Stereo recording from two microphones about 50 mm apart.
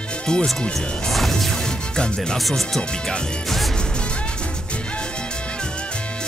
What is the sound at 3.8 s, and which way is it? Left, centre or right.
Music, left.